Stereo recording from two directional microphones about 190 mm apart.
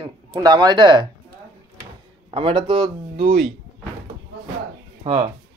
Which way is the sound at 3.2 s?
55° right (ahead or behind).